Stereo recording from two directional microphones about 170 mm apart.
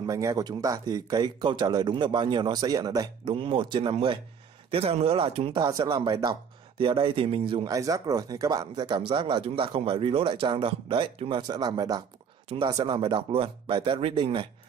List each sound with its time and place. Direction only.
0.0 s speech: 20° right (ahead or behind)
7.7 s speech: 20° right (ahead or behind)